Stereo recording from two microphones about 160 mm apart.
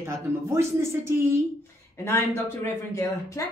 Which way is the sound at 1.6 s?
15° left (ahead or behind).